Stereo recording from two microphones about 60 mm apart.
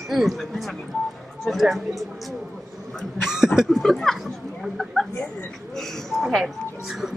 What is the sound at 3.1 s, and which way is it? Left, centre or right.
Chuckle, centre.